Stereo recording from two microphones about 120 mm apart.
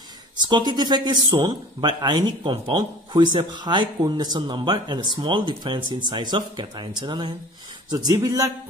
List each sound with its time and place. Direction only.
0.4 s a man's voice: 40° right (ahead or behind)